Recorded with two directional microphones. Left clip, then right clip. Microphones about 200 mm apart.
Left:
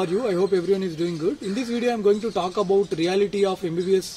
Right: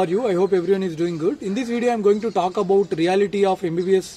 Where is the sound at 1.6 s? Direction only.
55° right (ahead or behind).